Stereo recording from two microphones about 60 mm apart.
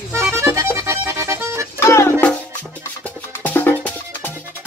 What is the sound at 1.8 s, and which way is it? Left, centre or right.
Music, left.